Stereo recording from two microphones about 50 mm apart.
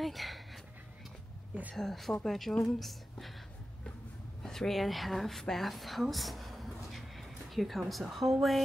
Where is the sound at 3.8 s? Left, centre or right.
Centre.